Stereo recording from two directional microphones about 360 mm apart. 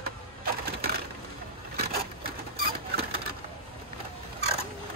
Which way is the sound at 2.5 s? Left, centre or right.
Right.